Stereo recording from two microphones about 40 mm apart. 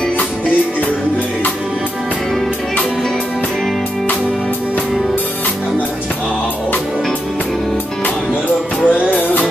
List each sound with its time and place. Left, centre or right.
8.8 s music: left